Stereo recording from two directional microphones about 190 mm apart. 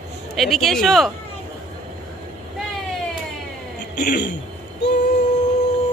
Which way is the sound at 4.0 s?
60° left (ahead or behind).